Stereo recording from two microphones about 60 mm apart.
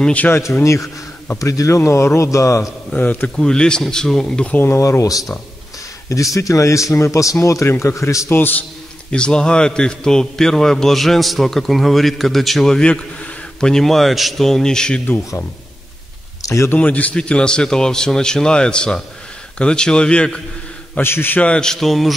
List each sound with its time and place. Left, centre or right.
0.0 s a man's voice: left
0.3 s speech: left
1.4 s speech: left
1.8 s a man's voice: left
2.9 s a man's voice: left
3.3 s a man's voice: centre
4.6 s speech: left
8.3 s a man's voice: left
9.1 s a man's voice: centre
12.7 s a man's voice: centre
16.7 s a man's voice: left
21.0 s a man's voice: left
21.4 s a man's voice: centre